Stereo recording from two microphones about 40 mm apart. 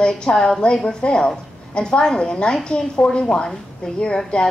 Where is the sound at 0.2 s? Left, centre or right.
Centre.